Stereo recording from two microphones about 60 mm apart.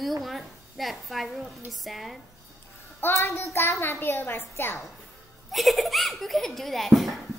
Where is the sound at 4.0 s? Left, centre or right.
Left.